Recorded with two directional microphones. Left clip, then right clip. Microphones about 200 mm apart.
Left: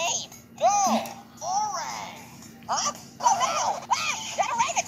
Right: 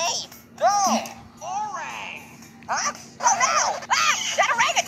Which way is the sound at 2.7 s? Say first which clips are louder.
Right 2 dB; 10° right (ahead or behind).